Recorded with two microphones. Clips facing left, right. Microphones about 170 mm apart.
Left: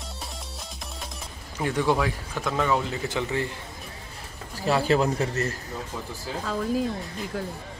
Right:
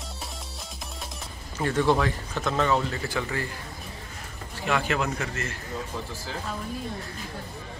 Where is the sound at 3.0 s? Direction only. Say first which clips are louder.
Left 3 dB; 20° left (ahead or behind).